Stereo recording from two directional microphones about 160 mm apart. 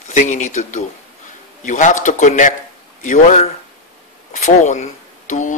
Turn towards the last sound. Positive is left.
turn(degrees=50)  # may be behind; listen again after turning